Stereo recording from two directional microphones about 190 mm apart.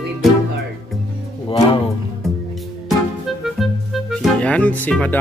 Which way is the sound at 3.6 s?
Centre (ahead or behind).